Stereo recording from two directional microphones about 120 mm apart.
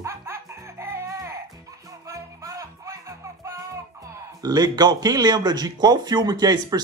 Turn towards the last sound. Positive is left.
turn(degrees=-35)  # may be behind; listen again after turning